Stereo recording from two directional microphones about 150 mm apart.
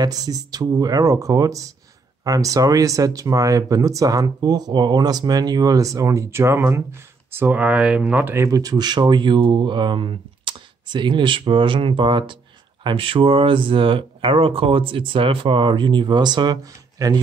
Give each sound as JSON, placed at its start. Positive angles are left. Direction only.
{"t": 0.0, "sound": "speech", "side_deg": -25}